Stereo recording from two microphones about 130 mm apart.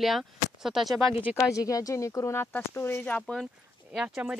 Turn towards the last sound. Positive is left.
turn(degrees=-5)  # may be behind; listen again after turning